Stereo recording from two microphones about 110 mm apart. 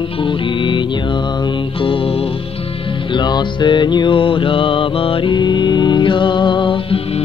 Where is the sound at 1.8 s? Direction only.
55° left (ahead or behind).